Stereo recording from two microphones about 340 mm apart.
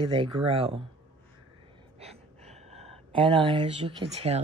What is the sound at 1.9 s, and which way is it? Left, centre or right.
Speech, centre.